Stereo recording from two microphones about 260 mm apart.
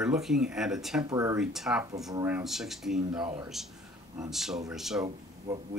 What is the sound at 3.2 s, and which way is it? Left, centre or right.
Speech, centre.